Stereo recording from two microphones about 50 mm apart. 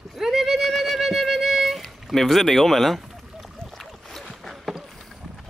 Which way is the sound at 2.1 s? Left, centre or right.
Centre.